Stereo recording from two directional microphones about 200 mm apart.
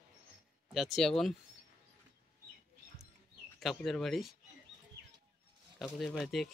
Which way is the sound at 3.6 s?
Centre (ahead or behind).